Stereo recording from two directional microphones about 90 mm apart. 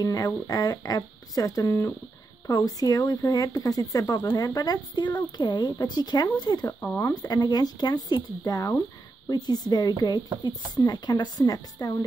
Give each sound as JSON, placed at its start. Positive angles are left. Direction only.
{"t": 0.0, "sound": "speech", "side_deg": 45}